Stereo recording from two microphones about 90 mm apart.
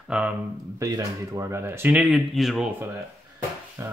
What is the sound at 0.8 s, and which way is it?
Speech, 40° right (ahead or behind).